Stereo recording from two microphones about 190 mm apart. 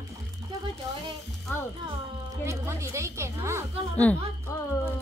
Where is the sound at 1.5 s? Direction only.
10° left (ahead or behind).